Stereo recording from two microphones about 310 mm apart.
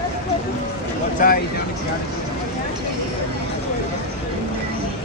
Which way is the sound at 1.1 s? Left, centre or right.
Left.